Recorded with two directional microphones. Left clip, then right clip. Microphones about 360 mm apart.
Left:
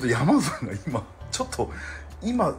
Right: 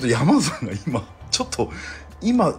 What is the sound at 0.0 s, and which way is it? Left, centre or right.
Speech, centre.